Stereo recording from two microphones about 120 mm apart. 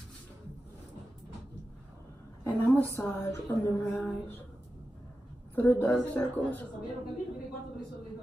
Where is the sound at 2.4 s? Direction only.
15° left (ahead or behind).